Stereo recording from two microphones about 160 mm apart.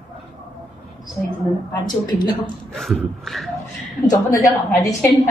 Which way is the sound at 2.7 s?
Centre (ahead or behind).